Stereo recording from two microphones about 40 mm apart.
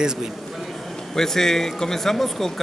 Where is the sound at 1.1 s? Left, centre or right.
Centre.